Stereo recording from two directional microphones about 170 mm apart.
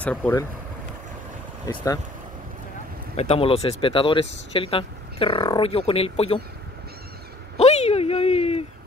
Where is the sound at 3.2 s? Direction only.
35° left (ahead or behind).